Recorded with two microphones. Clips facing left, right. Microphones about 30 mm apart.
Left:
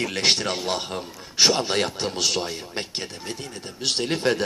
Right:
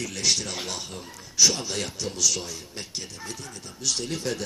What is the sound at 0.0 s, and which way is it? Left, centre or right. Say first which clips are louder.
A man's voice: left 5 dB; left.